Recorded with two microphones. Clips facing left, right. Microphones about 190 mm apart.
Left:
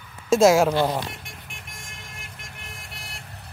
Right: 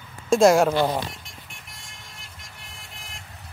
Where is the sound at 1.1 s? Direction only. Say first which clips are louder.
Left 3 dB; 55° left (ahead or behind).